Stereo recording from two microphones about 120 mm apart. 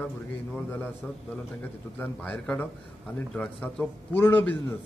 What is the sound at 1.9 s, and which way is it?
Speech, 15° left (ahead or behind).